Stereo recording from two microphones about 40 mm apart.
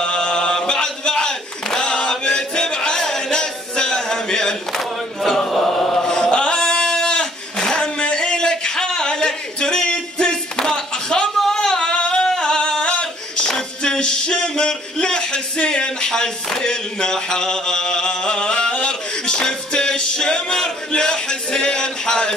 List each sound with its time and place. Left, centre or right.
0.0 s chant: left
11.3 s a sound: centre
12.3 s singing: centre
12.9 s clapping: left
13.6 s music: centre
14.6 s a sound: centre